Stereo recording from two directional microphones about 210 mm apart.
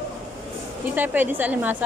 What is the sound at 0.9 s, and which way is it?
Speech, 10° right (ahead or behind).